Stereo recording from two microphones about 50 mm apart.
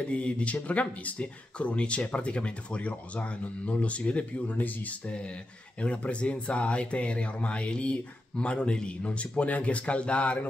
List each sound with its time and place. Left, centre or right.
0.1 s speech: left